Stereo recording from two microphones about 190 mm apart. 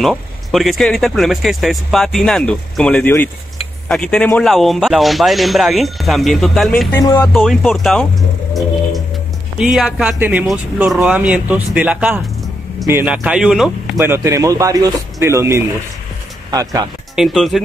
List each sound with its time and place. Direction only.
0.0 s speech: centre (ahead or behind)
7.0 s music: 20° left (ahead or behind)
7.3 s speech: centre (ahead or behind)
9.6 s speech: centre (ahead or behind)
13.9 s speech: 15° right (ahead or behind)
17.1 s speech: centre (ahead or behind)